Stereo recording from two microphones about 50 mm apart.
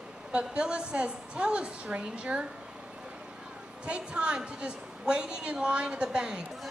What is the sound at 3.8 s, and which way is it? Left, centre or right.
A woman's voice, right.